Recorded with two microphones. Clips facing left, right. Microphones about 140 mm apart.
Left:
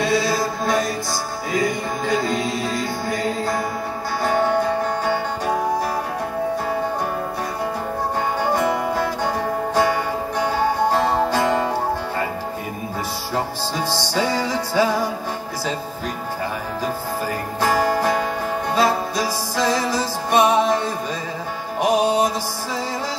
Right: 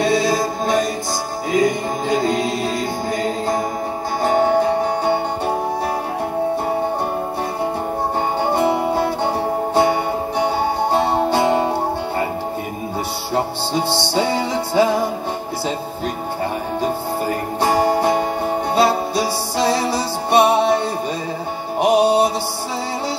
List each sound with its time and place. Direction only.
0.0 s mantra: 25° right (ahead or behind)
1.5 s music: 20° right (ahead or behind)
8.4 s music: 25° right (ahead or behind)
10.4 s music: 25° right (ahead or behind)
13.8 s music: 25° right (ahead or behind)
17.6 s music: 30° right (ahead or behind)
21.8 s music: 30° right (ahead or behind)